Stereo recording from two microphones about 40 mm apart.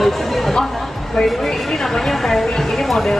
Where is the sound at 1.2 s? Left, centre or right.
Centre.